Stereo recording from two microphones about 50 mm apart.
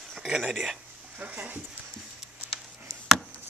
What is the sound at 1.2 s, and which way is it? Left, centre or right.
Speech, right.